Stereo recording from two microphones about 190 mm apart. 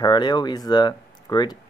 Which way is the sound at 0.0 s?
25° left (ahead or behind).